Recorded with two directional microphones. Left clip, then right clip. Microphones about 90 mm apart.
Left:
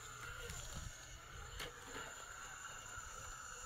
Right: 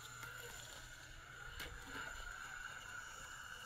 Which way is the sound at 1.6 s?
20° left (ahead or behind).